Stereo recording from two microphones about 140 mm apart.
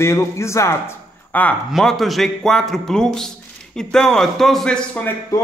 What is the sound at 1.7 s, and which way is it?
A man's voice, centre (ahead or behind).